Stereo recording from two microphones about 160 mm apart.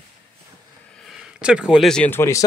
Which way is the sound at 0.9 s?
Centre (ahead or behind).